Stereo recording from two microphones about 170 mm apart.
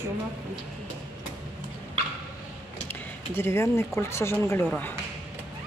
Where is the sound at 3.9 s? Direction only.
15° left (ahead or behind).